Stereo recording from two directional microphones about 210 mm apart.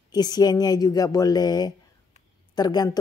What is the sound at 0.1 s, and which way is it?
A woman's voice, 20° left (ahead or behind).